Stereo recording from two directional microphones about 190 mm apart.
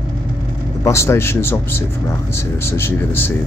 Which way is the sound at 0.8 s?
15° left (ahead or behind).